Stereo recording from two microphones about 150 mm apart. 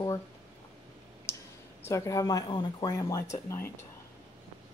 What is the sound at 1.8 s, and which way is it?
Speech, 20° left (ahead or behind).